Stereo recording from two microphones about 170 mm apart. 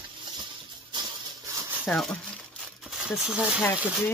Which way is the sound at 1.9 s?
5° left (ahead or behind).